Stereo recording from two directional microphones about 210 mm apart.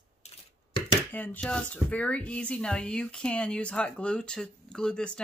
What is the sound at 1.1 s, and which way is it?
Speech, 10° left (ahead or behind).